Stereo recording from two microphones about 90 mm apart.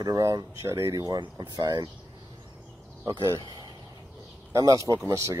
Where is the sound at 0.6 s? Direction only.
30° right (ahead or behind).